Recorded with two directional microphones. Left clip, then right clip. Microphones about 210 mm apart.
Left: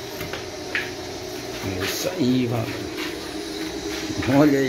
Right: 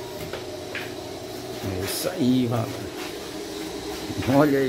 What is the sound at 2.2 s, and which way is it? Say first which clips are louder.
Speech: even; 10° right (ahead or behind).